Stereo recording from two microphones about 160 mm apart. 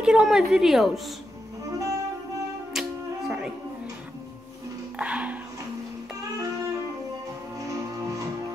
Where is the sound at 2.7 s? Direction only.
5° right (ahead or behind).